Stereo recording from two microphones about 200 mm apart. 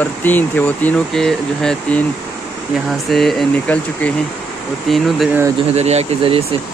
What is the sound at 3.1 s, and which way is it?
Speech, centre (ahead or behind).